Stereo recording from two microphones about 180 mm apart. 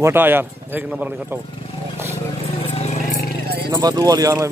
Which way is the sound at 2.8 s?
40° left (ahead or behind).